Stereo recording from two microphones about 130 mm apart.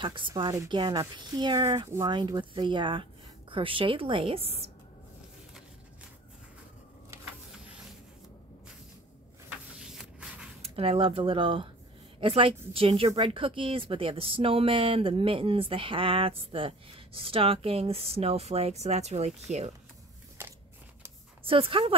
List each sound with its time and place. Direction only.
0.0 s speech: 40° right (ahead or behind)
9.8 s a sound: 5° right (ahead or behind)
10.6 s speech: 45° right (ahead or behind)
21.5 s speech: 45° right (ahead or behind)